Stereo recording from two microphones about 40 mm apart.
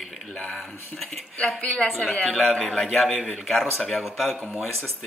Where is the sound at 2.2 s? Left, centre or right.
Centre.